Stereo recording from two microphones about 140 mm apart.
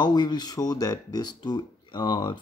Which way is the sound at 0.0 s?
30° left (ahead or behind).